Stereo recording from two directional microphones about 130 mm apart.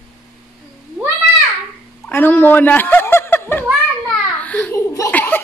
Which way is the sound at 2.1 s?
15° left (ahead or behind).